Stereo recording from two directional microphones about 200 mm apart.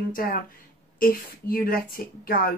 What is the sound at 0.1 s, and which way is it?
Speech, 45° left (ahead or behind).